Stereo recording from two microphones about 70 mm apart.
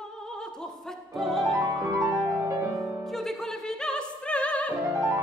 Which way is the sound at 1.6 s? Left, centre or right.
Right.